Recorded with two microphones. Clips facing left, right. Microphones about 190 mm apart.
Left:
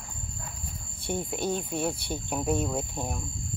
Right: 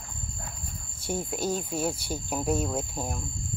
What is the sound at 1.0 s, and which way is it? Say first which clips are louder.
Speech: even; centre (ahead or behind).